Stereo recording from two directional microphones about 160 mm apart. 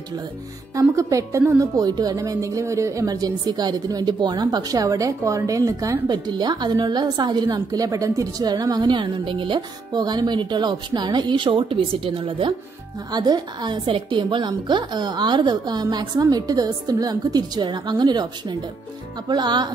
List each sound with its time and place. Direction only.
0.7 s speech: 20° right (ahead or behind)